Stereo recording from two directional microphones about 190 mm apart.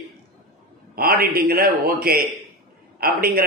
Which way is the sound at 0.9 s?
50° right (ahead or behind).